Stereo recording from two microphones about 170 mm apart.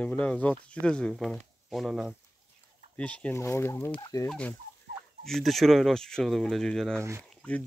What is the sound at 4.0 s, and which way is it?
Fowl, 20° left (ahead or behind).